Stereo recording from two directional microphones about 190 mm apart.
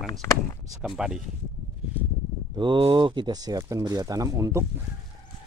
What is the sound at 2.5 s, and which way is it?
Speech, 25° right (ahead or behind).